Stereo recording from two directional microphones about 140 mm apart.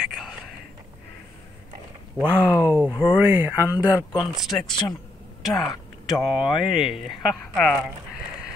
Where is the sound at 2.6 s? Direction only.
15° right (ahead or behind).